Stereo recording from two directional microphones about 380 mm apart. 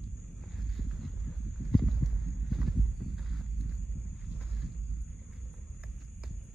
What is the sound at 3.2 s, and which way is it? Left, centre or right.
Walk, centre.